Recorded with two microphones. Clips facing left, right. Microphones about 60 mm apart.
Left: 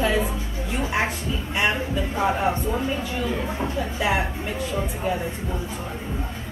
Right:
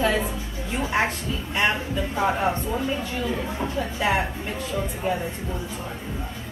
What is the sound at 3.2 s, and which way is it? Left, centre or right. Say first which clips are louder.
Speech: left 1 dB; left.